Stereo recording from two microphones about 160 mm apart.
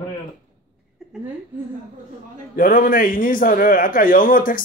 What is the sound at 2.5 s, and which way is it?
A man's voice, 60° left (ahead or behind).